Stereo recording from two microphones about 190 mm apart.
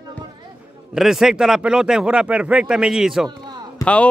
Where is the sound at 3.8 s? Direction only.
20° left (ahead or behind).